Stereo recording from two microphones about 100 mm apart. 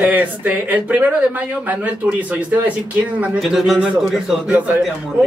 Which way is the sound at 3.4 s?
Centre (ahead or behind).